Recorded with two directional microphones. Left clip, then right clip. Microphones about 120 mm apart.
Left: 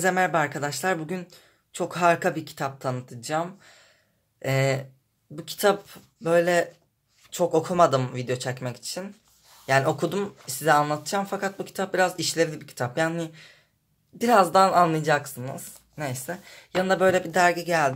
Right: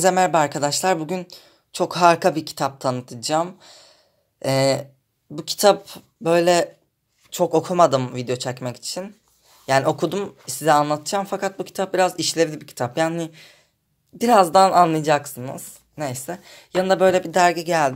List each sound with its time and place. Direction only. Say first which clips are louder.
0.0 s speech: right 6 dB; 25° right (ahead or behind)